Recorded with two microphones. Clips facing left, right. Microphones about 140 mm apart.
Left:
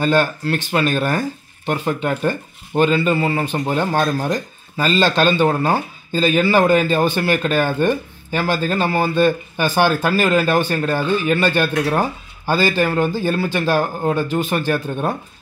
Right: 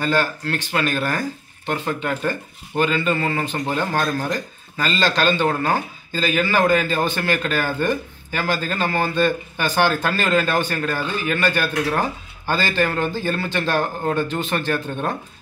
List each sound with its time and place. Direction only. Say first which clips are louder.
0.0 s speech: left 4 dB; 20° left (ahead or behind)